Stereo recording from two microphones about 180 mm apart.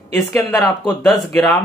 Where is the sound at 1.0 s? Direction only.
Centre (ahead or behind).